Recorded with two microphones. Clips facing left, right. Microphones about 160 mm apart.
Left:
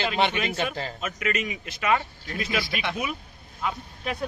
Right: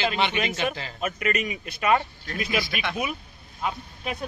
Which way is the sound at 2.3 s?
15° right (ahead or behind).